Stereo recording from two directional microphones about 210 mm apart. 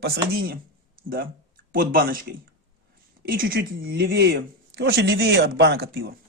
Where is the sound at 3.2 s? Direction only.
45° right (ahead or behind).